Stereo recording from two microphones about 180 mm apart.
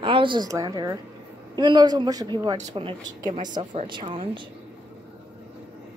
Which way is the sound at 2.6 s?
35° right (ahead or behind).